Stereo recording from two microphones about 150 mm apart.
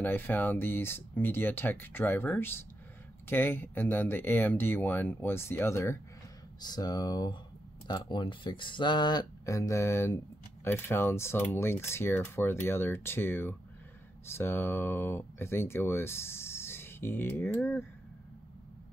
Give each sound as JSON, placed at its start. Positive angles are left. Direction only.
{"t": 0.0, "sound": "speech", "side_deg": 10}